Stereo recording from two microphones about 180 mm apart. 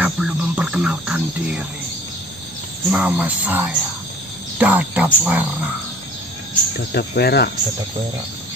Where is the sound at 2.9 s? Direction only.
10° right (ahead or behind).